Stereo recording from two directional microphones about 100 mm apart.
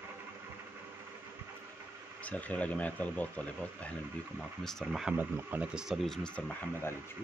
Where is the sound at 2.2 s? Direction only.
15° left (ahead or behind).